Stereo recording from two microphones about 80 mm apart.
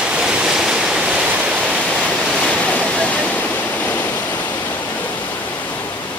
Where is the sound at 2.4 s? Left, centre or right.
Centre.